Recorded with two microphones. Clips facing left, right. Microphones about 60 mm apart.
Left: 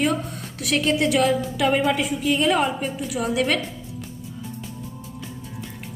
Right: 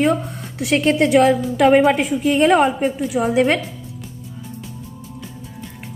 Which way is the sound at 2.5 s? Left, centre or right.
Right.